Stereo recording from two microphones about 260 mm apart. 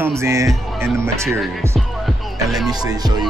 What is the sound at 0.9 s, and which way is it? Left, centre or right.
Music, centre.